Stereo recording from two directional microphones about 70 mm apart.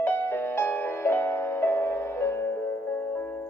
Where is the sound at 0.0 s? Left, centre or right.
Left.